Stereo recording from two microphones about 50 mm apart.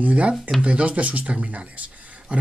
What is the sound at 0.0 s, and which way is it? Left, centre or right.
Speech, right.